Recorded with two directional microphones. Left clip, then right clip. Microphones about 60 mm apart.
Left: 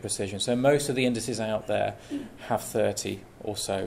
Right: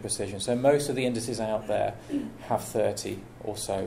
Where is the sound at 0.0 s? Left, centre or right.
Left.